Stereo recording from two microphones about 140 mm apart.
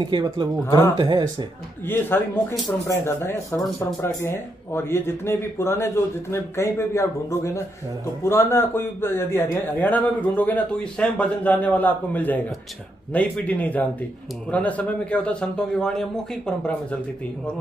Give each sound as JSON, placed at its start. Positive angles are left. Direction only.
{"t": 0.0, "sound": "speech", "side_deg": -30}
{"t": 0.7, "sound": "speech", "side_deg": 25}
{"t": 0.9, "sound": "speech", "side_deg": -30}
{"t": 1.9, "sound": "speech", "side_deg": 15}